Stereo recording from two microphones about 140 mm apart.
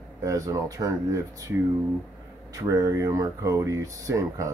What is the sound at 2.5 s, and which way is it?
Speech, 25° right (ahead or behind).